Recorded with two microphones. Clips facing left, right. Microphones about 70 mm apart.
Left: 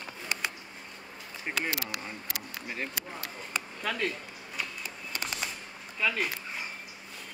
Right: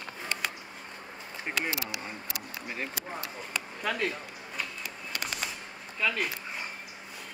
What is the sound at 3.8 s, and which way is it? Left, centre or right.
Speech, centre.